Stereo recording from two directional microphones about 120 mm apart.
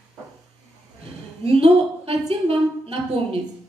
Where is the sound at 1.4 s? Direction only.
55° right (ahead or behind).